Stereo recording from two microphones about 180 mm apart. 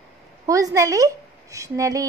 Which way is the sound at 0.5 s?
20° right (ahead or behind).